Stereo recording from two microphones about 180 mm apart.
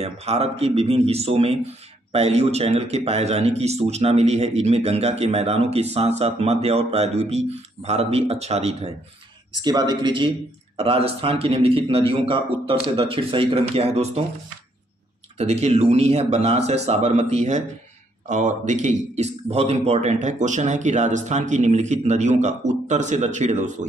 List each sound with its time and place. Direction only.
0.0 s a man's voice: 35° right (ahead or behind)
9.6 s a man's voice: 25° right (ahead or behind)
15.3 s a man's voice: 35° right (ahead or behind)